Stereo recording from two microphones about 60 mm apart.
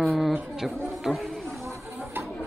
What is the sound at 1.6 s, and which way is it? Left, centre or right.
Chatter, right.